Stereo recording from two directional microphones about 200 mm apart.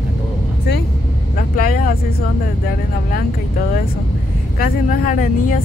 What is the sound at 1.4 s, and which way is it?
Vehicle, 45° left (ahead or behind).